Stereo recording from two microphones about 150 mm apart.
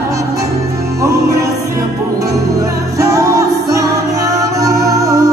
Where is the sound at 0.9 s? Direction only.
20° right (ahead or behind).